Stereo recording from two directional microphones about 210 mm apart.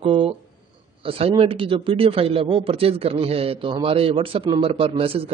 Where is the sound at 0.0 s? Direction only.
25° right (ahead or behind).